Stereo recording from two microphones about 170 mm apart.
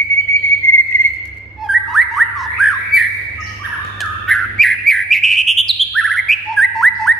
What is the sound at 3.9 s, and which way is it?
Bird, centre (ahead or behind).